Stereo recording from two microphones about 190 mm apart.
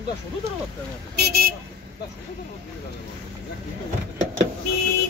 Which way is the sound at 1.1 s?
55° right (ahead or behind).